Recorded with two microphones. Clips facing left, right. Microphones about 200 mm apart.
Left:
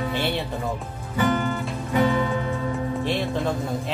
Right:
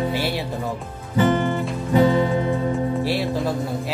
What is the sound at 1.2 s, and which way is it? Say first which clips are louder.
Music: right 3 dB; 20° right (ahead or behind).